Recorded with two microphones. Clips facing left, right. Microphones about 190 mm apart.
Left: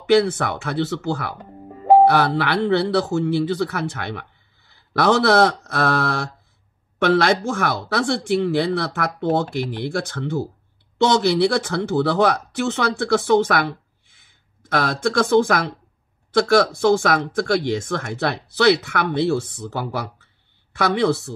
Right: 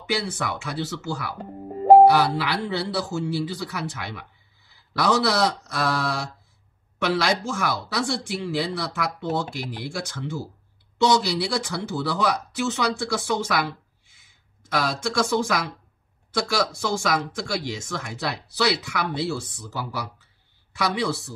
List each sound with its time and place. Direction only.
0.1 s speech: 60° left (ahead or behind)
1.4 s music: 35° right (ahead or behind)
2.0 s speech: 60° left (ahead or behind)